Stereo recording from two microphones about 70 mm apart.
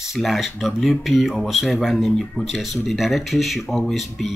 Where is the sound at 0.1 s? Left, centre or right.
Centre.